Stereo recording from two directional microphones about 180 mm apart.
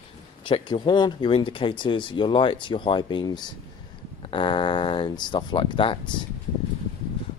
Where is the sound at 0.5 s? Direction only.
25° left (ahead or behind).